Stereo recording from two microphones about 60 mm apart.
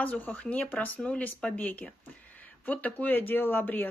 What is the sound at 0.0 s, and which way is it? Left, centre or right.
Speech, left.